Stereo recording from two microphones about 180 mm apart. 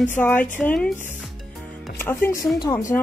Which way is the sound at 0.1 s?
10° left (ahead or behind).